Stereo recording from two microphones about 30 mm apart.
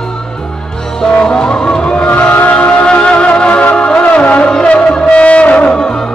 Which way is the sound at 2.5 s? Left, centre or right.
Left.